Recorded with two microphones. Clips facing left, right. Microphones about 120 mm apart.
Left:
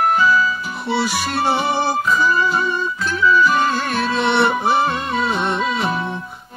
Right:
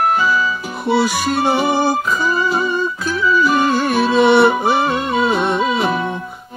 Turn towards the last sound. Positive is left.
turn(degrees=0)  # may be behind; listen again after turning